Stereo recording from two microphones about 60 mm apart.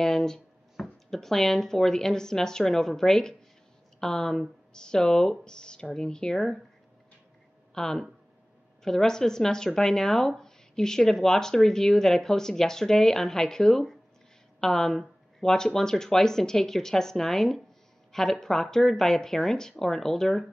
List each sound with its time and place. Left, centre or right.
0.0 s a sound: centre
1.1 s speech: centre
7.7 s speech: centre